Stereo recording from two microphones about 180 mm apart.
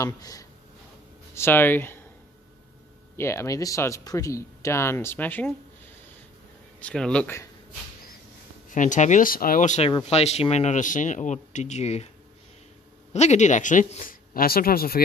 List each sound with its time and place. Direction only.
0.0 s speech: 20° left (ahead or behind)
3.2 s speech: 15° left (ahead or behind)
6.8 s speech: 5° left (ahead or behind)
8.6 s speech: 45° left (ahead or behind)
13.1 s speech: 40° left (ahead or behind); by 15.0 s 55° left (ahead or behind)